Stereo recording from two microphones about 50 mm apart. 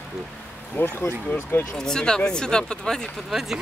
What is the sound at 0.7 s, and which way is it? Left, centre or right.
Speech, left.